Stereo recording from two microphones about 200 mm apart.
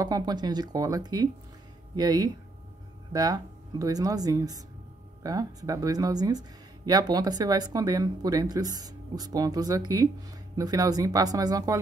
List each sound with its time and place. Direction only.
0.0 s speech: 20° right (ahead or behind)